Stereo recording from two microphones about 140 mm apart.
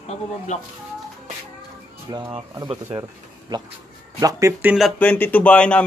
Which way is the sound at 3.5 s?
30° right (ahead or behind).